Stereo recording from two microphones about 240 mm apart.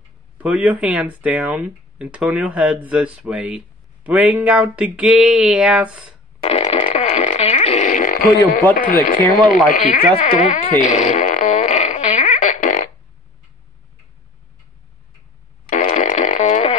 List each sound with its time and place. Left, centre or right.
0.4 s speech: centre
6.4 s fart: left
8.7 s speech: left
9.7 s fart: left
15.7 s fart: left